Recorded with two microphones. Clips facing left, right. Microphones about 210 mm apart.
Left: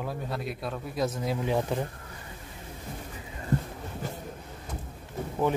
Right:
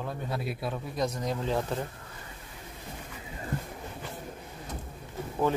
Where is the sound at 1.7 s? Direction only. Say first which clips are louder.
Left 3 dB; 15° left (ahead or behind).